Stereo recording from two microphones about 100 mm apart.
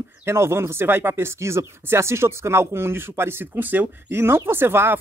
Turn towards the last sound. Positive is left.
turn(degrees=-25)  # may be behind; listen again after turning